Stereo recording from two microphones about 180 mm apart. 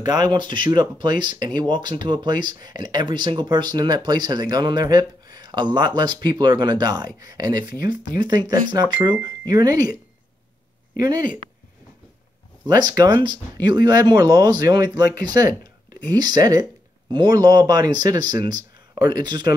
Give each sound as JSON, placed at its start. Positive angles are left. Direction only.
{"t": 0.0, "sound": "speech", "side_deg": -25}
{"t": 11.0, "sound": "speech", "side_deg": -20}
{"t": 12.6, "sound": "speech", "side_deg": -25}